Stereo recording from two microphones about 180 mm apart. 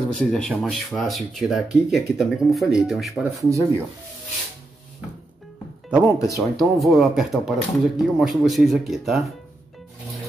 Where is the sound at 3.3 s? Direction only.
15° right (ahead or behind).